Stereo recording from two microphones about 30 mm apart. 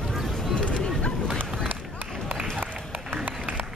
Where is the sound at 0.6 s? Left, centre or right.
Left.